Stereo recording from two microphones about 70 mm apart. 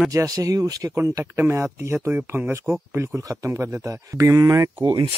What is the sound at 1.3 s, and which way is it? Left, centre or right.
Speech, right.